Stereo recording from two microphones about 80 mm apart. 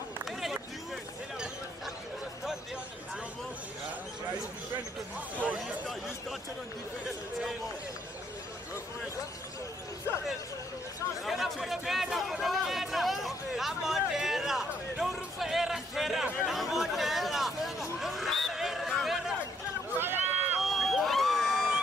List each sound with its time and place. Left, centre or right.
11.2 s a sound: centre
20.0 s run: right
20.6 s crowd: centre